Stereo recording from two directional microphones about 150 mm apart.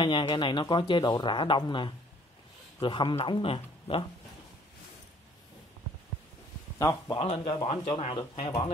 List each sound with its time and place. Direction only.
0.0 s speech: 30° left (ahead or behind)
6.8 s speech: 25° left (ahead or behind)
7.2 s speech: 40° left (ahead or behind)